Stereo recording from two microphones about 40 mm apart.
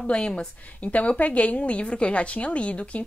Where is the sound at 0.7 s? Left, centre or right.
Left.